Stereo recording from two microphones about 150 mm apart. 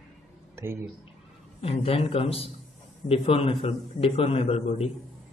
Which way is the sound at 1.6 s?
40° left (ahead or behind).